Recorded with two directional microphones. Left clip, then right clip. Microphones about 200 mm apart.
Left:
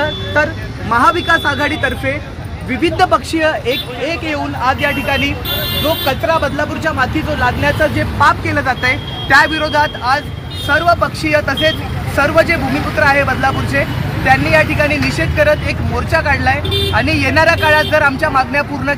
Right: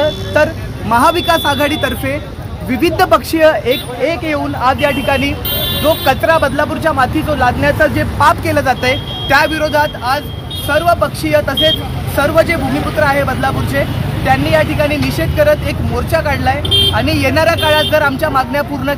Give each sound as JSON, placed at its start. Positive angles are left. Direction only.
{"t": 0.0, "sound": "speech", "side_deg": -50}
{"t": 9.3, "sound": "speech", "side_deg": -25}